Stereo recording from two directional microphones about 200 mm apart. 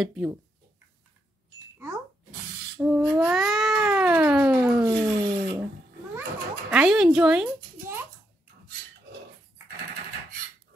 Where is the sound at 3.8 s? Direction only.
5° right (ahead or behind).